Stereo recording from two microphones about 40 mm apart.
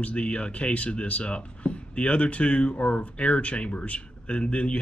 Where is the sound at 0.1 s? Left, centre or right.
Left.